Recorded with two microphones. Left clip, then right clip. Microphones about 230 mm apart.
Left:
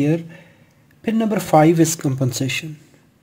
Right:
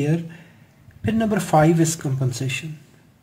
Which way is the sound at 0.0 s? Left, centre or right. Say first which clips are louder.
Left 5 dB; left.